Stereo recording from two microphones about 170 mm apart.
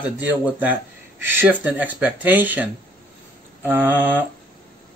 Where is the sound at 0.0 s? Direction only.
10° right (ahead or behind).